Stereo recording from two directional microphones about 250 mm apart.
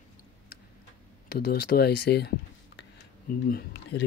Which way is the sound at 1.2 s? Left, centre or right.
Left.